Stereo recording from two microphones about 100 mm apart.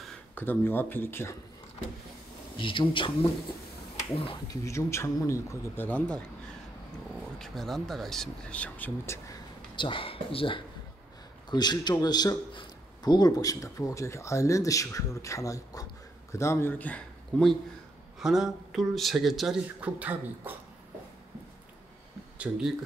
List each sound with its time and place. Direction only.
0.3 s speech: 20° left (ahead or behind)
2.5 s speech: 55° left (ahead or behind)
4.5 s speech: 30° left (ahead or behind)
5.9 s speech: 10° left (ahead or behind); by 9.4 s 25° left (ahead or behind)
9.8 s speech: 60° left (ahead or behind)
11.5 s a man's voice: 45° left (ahead or behind); by 17.5 s 10° left (ahead or behind)
18.2 s speech: 5° right (ahead or behind)
19.8 s speech: 15° right (ahead or behind)
22.4 s speech: 5° right (ahead or behind)